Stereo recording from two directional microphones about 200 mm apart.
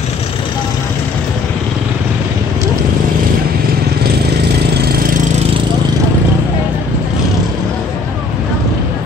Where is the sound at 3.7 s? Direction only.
55° right (ahead or behind).